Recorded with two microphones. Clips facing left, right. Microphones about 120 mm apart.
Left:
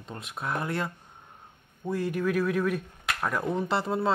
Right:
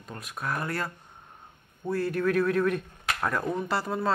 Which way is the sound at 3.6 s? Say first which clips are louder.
Left 2 dB; 25° left (ahead or behind).